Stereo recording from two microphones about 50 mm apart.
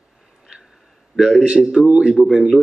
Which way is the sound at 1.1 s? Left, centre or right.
Centre.